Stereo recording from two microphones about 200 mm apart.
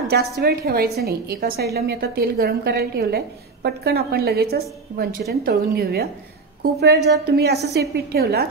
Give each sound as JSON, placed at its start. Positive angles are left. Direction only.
{"t": 0.4, "sound": "a woman's voice", "side_deg": -50}